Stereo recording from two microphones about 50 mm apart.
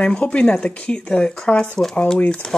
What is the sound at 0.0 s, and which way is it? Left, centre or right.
Speech, left.